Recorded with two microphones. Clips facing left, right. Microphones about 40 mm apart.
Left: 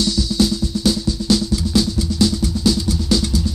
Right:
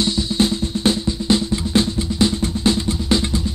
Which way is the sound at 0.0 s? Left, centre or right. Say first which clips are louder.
Even; right.